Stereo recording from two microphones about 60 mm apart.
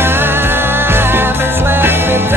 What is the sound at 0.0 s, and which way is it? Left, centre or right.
Music, right.